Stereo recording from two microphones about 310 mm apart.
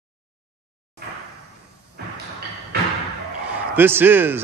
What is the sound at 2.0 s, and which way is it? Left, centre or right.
Thump, right.